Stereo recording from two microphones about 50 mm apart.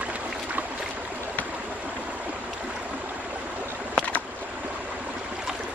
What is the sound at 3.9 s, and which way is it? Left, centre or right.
Boat, left.